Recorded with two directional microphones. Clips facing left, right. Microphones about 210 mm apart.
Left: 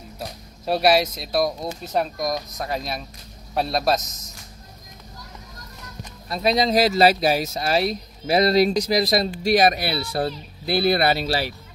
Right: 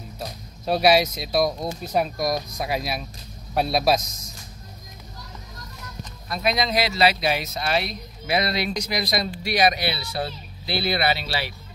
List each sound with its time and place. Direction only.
0.2 s speech: centre (ahead or behind)
6.2 s speech: 30° left (ahead or behind)
9.4 s speech: 45° left (ahead or behind)